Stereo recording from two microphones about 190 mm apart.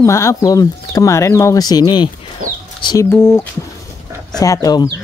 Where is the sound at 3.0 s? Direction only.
10° left (ahead or behind).